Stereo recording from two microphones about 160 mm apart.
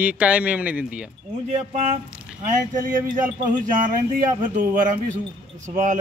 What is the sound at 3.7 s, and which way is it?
Speech, 55° right (ahead or behind).